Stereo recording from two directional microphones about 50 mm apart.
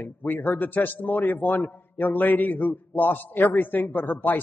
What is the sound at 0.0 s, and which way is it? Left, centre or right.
A man's voice, left.